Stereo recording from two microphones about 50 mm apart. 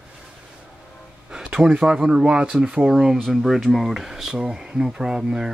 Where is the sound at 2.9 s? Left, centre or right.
Centre.